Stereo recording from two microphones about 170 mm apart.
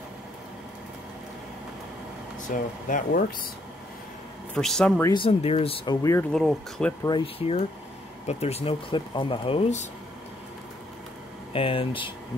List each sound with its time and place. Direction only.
2.4 s speech: 50° left (ahead or behind)
4.6 s speech: 5° left (ahead or behind)
5.1 s speech: 35° left (ahead or behind)
6.3 s speech: 5° left (ahead or behind)
7.1 s speech: 30° left (ahead or behind)
11.5 s speech: 30° left (ahead or behind)